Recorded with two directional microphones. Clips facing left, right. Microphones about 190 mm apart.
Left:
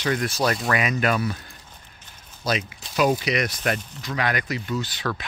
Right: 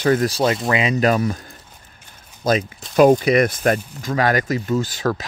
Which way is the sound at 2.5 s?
50° right (ahead or behind).